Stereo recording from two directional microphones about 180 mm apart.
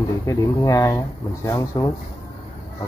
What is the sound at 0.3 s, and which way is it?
Speech, 15° left (ahead or behind).